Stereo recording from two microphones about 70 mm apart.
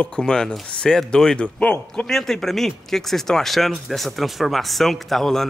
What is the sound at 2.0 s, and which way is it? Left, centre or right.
Speech, centre.